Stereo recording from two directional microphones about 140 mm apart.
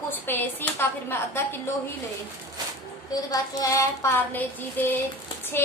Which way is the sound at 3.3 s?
25° left (ahead or behind).